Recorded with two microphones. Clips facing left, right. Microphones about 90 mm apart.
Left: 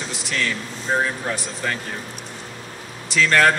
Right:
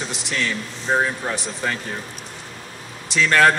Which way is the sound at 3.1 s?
20° right (ahead or behind).